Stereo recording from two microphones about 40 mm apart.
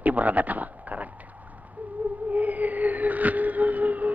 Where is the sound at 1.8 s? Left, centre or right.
Right.